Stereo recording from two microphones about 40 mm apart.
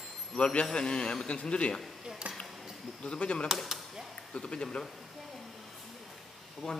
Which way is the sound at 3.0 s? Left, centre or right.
Left.